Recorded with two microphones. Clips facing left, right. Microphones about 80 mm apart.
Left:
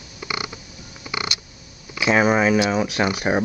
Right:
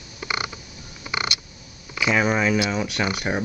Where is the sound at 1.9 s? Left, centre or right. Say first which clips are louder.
Left 4 dB; centre.